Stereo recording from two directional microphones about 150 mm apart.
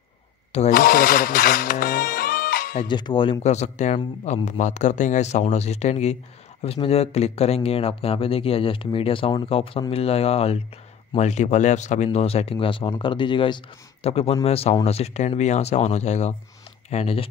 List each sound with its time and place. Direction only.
0.7 s music: 75° left (ahead or behind)
2.8 s speech: 30° left (ahead or behind)
3.4 s a man's voice: 50° left (ahead or behind)